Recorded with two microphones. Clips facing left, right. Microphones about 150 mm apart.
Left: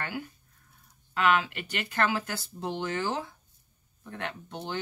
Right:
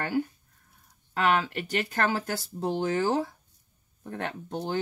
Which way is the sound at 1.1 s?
40° right (ahead or behind).